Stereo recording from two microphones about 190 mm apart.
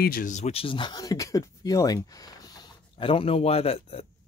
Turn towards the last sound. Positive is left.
turn(degrees=30)  # may be behind; listen again after turning